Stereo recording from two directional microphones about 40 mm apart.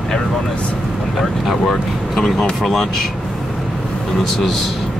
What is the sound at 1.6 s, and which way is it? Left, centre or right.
Speech, centre.